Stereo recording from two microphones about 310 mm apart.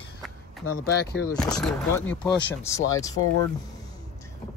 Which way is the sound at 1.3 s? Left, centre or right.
Centre.